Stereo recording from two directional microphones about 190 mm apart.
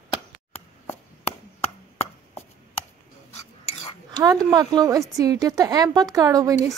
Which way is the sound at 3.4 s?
35° left (ahead or behind).